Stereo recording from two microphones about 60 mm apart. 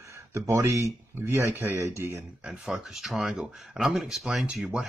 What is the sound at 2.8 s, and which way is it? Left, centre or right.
Speech, centre.